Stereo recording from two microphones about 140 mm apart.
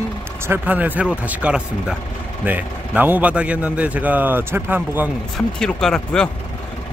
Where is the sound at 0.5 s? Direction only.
10° right (ahead or behind).